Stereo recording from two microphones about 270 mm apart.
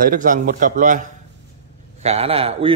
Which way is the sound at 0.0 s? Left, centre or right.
Right.